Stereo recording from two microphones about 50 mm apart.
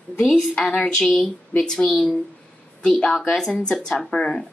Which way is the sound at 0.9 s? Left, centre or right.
Centre.